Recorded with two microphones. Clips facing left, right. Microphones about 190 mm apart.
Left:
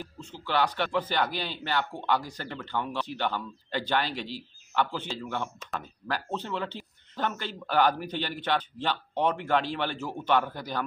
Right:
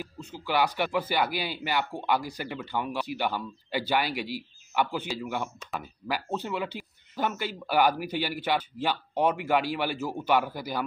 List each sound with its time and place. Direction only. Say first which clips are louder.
0.0 s speech: right 2 dB; 10° right (ahead or behind)